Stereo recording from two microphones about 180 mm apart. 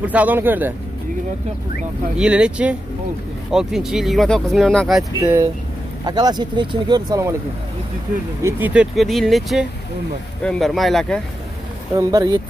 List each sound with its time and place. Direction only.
0.0 s speech: 10° right (ahead or behind)
2.1 s speech: 5° right (ahead or behind)
5.2 s speech: 15° right (ahead or behind)
8.4 s speech: 15° right (ahead or behind)
8.9 s speech: centre (ahead or behind)
11.9 s speech: 20° right (ahead or behind)